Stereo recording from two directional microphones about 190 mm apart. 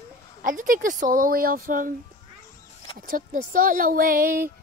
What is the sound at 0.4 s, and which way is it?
Speech, 45° right (ahead or behind).